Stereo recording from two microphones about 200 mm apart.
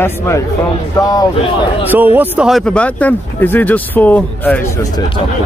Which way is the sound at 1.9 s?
10° right (ahead or behind).